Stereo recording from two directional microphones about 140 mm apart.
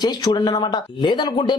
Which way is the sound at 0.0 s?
30° left (ahead or behind).